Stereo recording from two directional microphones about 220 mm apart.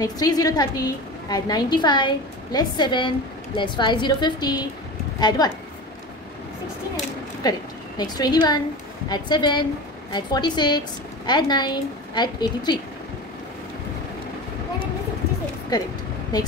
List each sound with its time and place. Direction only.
0.0 s a woman's voice: 15° left (ahead or behind)
7.4 s a woman's voice: 15° left (ahead or behind)
15.7 s a woman's voice: 20° left (ahead or behind)